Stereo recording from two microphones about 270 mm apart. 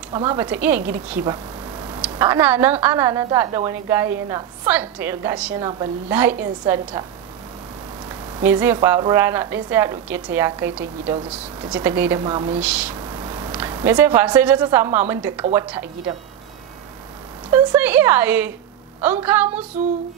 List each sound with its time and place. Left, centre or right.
0.1 s a woman's voice: centre
1.2 s a sound: centre
2.0 s a woman's voice: centre
8.4 s a woman's voice: centre
12.5 s a woman's voice: centre
17.5 s a woman's voice: centre